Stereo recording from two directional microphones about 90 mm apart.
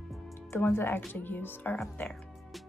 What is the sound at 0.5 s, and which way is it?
Speech, 25° left (ahead or behind).